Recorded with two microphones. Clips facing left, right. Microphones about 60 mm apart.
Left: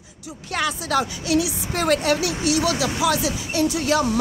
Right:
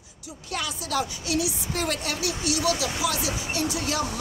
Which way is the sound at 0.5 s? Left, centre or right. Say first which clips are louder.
Left 6 dB; left.